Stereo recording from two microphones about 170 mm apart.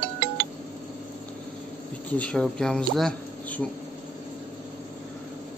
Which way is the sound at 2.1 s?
5° left (ahead or behind).